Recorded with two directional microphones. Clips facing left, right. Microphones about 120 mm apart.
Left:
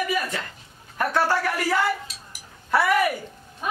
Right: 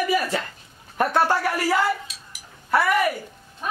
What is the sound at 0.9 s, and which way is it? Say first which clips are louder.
Speech: right 2 dB; 20° right (ahead or behind).